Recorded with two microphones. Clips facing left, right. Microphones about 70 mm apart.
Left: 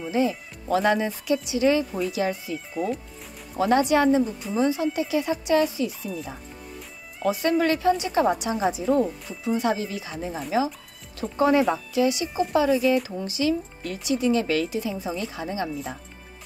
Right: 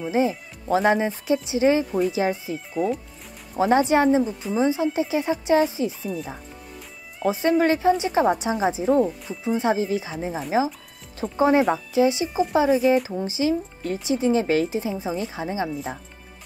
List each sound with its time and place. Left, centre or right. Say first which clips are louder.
0.1 s a woman's voice: right 1 dB; right
2.7 s speech: right 4 dB; centre
3.5 s a woman's voice: right 2 dB; right
6.0 s speech: right 3 dB; centre
7.2 s a woman's voice: right 2 dB; right
15.7 s speech: right 2 dB; centre